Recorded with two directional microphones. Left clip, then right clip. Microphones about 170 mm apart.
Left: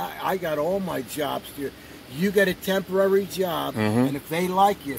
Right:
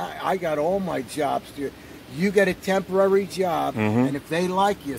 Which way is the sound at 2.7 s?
30° left (ahead or behind).